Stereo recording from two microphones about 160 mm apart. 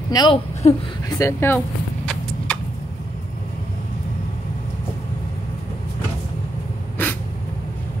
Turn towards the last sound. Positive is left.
turn(degrees=10)  # may be behind; listen again after turning